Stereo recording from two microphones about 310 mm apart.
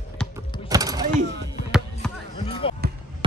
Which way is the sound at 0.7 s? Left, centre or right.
Centre.